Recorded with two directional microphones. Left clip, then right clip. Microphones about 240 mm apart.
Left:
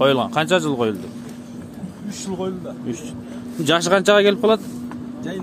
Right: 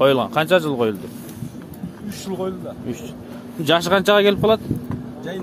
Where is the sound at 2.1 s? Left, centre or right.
Centre.